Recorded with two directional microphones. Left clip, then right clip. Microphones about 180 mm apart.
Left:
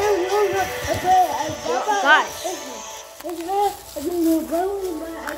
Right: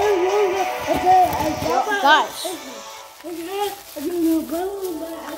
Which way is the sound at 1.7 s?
25° right (ahead or behind).